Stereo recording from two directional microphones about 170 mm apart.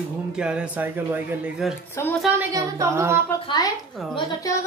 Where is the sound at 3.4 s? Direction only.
25° left (ahead or behind).